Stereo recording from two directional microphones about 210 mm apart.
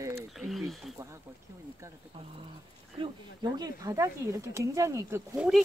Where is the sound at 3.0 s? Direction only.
20° right (ahead or behind).